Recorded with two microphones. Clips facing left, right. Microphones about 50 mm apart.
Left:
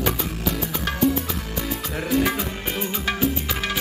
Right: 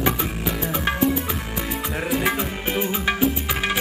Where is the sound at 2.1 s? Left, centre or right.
Centre.